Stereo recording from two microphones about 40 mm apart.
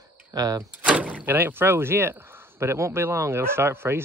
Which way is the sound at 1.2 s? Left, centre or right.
Right.